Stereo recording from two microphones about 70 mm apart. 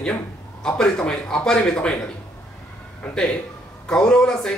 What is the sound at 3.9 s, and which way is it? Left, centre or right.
Speech, centre.